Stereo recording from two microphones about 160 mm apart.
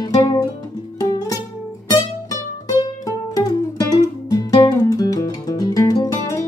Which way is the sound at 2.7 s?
20° left (ahead or behind).